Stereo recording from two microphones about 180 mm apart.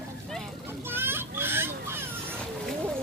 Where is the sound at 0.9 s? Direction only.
10° right (ahead or behind).